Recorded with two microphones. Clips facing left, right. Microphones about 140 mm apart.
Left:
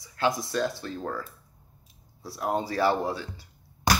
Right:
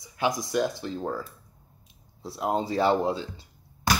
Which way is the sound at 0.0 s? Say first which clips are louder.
Even; 15° right (ahead or behind).